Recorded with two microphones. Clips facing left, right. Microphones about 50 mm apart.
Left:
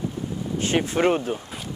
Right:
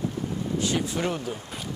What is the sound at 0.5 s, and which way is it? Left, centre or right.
Speech, left.